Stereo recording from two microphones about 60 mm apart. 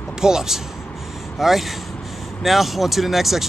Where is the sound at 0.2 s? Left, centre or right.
Centre.